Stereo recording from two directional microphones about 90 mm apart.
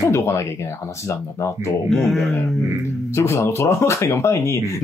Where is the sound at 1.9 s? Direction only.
Centre (ahead or behind).